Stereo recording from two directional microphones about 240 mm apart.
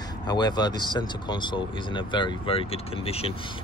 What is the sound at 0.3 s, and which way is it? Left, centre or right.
Speech, centre.